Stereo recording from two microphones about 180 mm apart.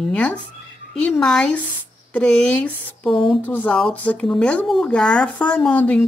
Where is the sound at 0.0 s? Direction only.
5° left (ahead or behind).